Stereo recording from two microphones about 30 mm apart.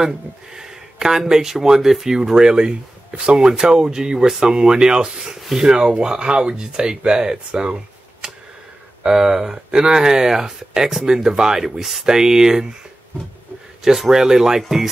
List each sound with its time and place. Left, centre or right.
0.6 s speech: centre
2.4 s speech: right
8.2 s a sound: right
9.0 s speech: centre
13.8 s speech: centre